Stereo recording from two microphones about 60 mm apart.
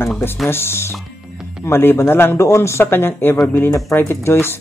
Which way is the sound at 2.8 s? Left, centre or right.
Left.